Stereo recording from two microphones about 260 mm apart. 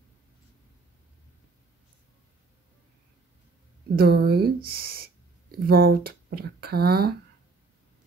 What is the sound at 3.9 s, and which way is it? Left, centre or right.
Speech, right.